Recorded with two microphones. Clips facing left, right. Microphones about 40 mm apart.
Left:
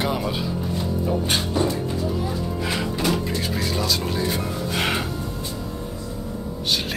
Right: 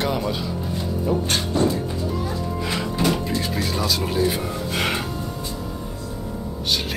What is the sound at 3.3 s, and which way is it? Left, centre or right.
Speech, centre.